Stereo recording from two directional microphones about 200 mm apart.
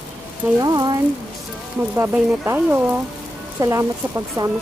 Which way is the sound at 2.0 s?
10° right (ahead or behind).